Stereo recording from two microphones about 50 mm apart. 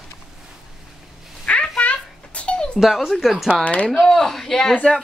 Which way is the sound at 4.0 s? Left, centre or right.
Centre.